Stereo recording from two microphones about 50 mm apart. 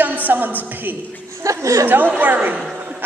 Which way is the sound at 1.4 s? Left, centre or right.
Right.